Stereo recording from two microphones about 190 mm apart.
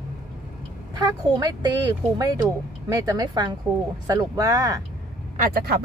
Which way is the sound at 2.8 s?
15° right (ahead or behind).